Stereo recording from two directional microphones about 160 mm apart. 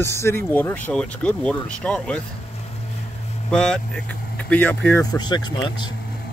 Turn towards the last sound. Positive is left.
turn(degrees=30)  # may be behind; listen again after turning